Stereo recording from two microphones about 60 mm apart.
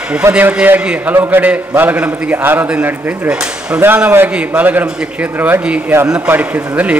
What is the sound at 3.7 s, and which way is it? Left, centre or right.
A man's voice, right.